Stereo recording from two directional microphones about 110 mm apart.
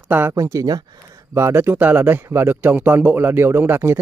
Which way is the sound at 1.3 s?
25° right (ahead or behind).